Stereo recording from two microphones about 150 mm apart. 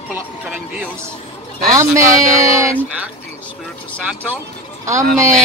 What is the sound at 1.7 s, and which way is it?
Speech, 20° right (ahead or behind).